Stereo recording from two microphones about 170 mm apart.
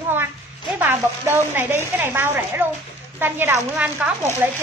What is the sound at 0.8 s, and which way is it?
A woman's voice, 15° right (ahead or behind).